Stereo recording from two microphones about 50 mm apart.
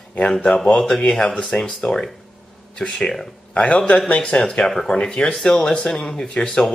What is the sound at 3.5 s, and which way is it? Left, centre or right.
A man's voice, left.